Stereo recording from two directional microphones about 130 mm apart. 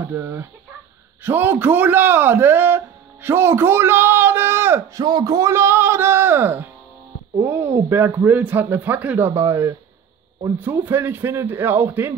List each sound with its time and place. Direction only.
0.0 s a man's voice: 20° right (ahead or behind)
5.0 s music: 30° right (ahead or behind)
7.4 s speech: 20° right (ahead or behind)
9.3 s speech: 25° right (ahead or behind)
10.6 s speech: 15° right (ahead or behind)